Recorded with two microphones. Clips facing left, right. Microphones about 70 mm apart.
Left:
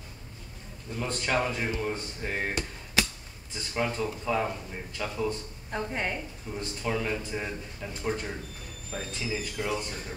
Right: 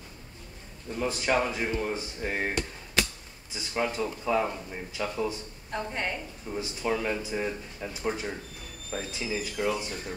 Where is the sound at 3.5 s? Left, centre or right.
Centre.